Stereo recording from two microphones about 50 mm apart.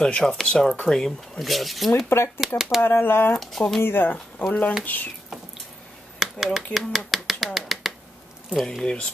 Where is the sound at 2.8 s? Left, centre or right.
Left.